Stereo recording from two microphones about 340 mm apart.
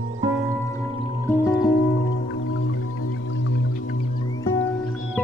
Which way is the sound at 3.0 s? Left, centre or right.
Left.